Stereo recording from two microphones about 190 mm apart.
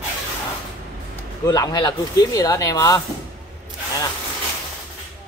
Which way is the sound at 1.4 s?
20° left (ahead or behind).